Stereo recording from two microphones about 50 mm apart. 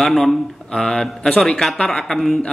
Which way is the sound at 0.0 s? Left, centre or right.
Centre.